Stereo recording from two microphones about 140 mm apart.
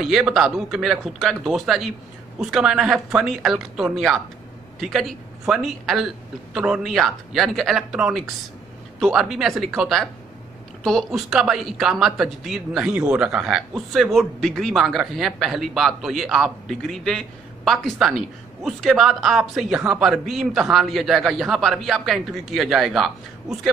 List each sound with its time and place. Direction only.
0.0 s speech: 5° right (ahead or behind)